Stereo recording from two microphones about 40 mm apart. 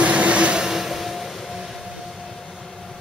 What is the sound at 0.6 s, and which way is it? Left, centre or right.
Vehicle, centre.